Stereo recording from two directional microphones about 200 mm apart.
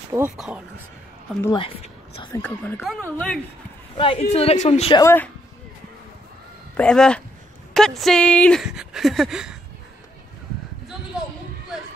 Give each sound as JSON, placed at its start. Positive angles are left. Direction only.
{"t": 0.1, "sound": "speech", "side_deg": -10}
{"t": 1.4, "sound": "a woman's voice", "side_deg": 20}
{"t": 2.4, "sound": "speech", "side_deg": 10}
{"t": 3.9, "sound": "a woman's voice", "side_deg": 25}
{"t": 5.0, "sound": "speech", "side_deg": 10}
{"t": 6.8, "sound": "speech", "side_deg": 5}